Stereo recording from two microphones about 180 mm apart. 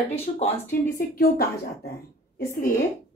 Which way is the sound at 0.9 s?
55° left (ahead or behind).